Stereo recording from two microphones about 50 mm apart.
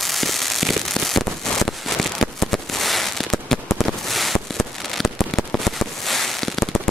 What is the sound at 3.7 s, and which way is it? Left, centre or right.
Fireworks, centre.